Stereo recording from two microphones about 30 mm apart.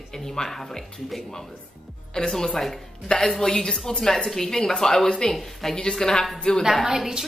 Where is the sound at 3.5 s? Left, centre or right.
Left.